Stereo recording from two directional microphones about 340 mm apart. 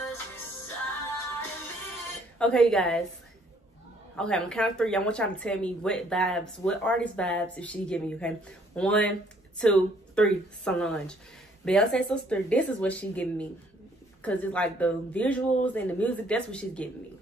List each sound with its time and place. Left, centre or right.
2.3 s speech: centre
4.2 s speech: centre